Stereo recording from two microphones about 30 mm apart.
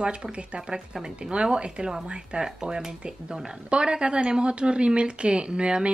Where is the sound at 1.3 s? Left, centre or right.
Right.